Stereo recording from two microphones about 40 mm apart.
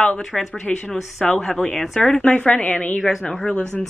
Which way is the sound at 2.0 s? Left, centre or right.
Left.